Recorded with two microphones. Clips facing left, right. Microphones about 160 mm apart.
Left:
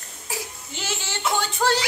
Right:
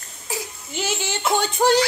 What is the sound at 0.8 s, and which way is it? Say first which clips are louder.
Speech: right 3 dB; 15° right (ahead or behind).